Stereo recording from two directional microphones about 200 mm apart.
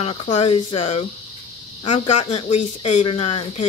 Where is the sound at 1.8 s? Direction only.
35° left (ahead or behind).